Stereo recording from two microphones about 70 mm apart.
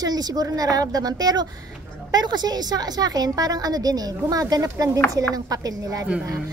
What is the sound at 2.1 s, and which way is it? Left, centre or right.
A woman's voice, right.